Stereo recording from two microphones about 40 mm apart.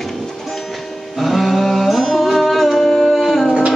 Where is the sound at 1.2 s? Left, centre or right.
Centre.